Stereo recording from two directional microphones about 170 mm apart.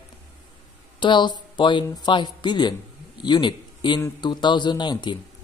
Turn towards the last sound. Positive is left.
turn(degrees=25)  # may be behind; listen again after turning